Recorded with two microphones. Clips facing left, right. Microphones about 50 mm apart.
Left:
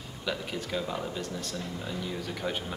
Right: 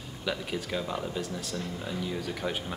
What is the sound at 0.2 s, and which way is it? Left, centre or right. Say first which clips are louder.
Speech: right 1 dB; centre.